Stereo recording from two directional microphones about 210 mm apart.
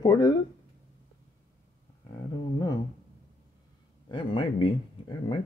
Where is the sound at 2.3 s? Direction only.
20° left (ahead or behind).